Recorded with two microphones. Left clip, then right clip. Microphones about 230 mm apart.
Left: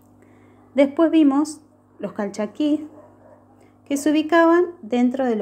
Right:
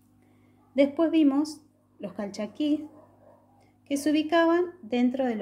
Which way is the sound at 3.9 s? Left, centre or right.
Centre.